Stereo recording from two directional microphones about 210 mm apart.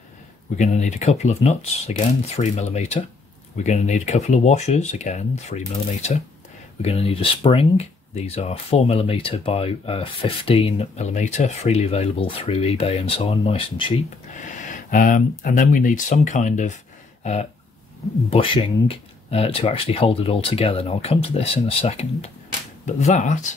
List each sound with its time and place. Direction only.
0.6 s speech: 35° left (ahead or behind)
6.8 s speech: 30° left (ahead or behind)
14.4 s speech: 35° left (ahead or behind)
17.2 s a sound: 30° left (ahead or behind)
18.3 s speech: 25° left (ahead or behind)